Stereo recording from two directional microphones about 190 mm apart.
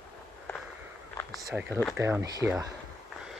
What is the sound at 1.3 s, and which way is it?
Speech, centre (ahead or behind).